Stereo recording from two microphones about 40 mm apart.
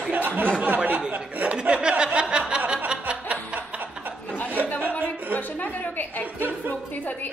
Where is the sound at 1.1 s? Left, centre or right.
Right.